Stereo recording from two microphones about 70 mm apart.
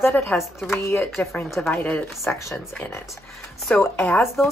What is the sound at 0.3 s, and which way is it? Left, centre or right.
A woman's voice, centre.